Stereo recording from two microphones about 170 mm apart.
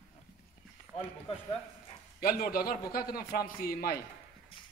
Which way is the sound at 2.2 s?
60° left (ahead or behind).